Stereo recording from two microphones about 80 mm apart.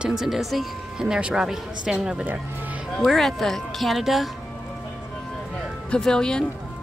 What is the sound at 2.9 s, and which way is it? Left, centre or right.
Speech, centre.